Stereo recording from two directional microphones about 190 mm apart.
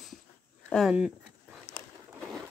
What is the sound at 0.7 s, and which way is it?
Speech, 5° left (ahead or behind).